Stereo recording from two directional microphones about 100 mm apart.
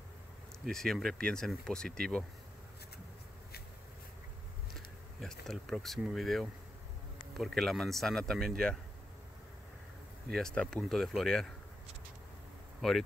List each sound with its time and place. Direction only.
0.7 s speech: 5° left (ahead or behind)
4.7 s speech: 5° left (ahead or behind)
10.3 s speech: 5° left (ahead or behind)
12.8 s speech: 5° left (ahead or behind)